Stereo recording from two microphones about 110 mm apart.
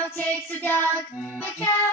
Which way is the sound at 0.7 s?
25° right (ahead or behind).